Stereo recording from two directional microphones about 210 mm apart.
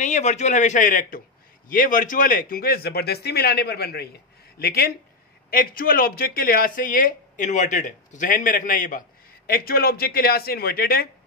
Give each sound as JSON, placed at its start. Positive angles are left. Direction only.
{"t": 0.0, "sound": "speech", "side_deg": 35}